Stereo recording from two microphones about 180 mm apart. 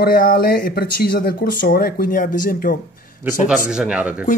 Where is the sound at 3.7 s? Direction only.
5° right (ahead or behind).